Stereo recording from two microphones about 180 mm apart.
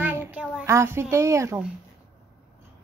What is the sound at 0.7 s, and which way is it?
Speech, 15° right (ahead or behind).